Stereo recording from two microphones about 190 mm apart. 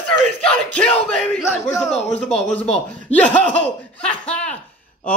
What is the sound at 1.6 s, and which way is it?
A man's voice, centre (ahead or behind).